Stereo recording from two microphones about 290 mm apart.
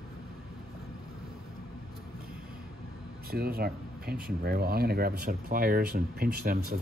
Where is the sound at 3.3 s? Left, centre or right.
Right.